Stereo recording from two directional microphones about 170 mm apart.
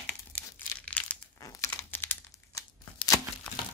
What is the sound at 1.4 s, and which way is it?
Crumpling, 20° left (ahead or behind).